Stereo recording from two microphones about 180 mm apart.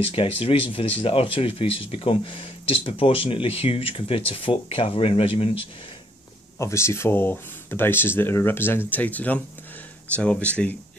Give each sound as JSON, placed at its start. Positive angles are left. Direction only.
{"t": 0.0, "sound": "speech", "side_deg": 30}
{"t": 6.6, "sound": "speech", "side_deg": 15}